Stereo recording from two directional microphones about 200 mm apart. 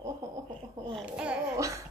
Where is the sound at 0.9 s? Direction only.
Centre (ahead or behind).